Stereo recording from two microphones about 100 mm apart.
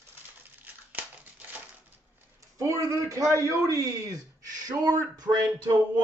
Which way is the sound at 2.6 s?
30° right (ahead or behind).